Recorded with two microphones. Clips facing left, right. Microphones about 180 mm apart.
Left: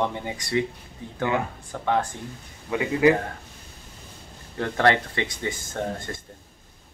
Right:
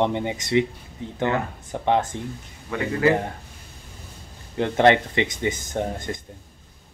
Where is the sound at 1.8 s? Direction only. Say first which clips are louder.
Right 3 dB; 20° right (ahead or behind).